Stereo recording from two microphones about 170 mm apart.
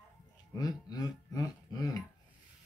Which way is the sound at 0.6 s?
25° left (ahead or behind).